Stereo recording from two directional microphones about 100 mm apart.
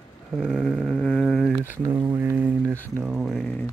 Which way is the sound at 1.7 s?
20° right (ahead or behind).